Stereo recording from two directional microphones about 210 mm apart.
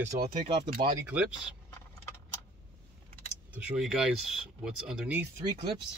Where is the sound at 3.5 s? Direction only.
5° right (ahead or behind).